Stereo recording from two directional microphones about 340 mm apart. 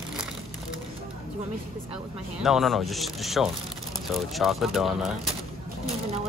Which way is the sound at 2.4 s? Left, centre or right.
Centre.